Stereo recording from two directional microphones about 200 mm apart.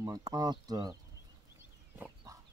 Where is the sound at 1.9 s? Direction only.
10° right (ahead or behind).